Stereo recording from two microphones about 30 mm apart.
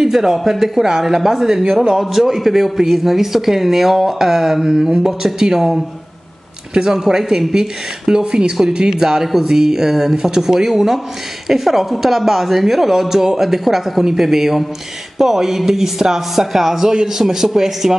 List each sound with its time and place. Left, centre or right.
0.0 s a woman's voice: centre
8.1 s a woman's voice: right; by 17.9 s centre